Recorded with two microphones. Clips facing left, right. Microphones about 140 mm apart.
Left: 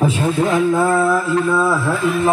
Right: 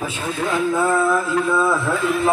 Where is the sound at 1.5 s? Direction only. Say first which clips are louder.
Left 2 dB; 5° left (ahead or behind).